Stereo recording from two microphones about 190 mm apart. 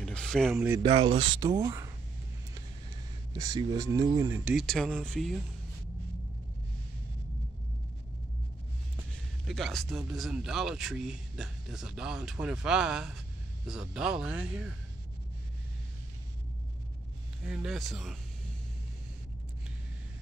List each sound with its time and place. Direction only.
0.0 s a sound: 5° left (ahead or behind)
0.8 s speech: 30° right (ahead or behind)
3.3 s speech: 20° right (ahead or behind)
4.5 s speech: centre (ahead or behind)
9.5 s speech: centre (ahead or behind)
17.5 s speech: 5° right (ahead or behind)